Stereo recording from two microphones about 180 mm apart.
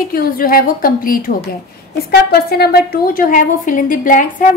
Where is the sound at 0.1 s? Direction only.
50° left (ahead or behind).